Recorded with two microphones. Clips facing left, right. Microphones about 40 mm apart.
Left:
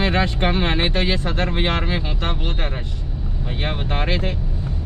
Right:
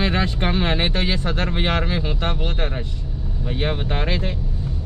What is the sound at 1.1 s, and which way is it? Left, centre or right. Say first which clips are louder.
Speech: left 1 dB; centre.